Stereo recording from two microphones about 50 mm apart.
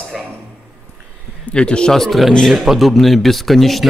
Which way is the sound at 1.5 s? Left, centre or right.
Centre.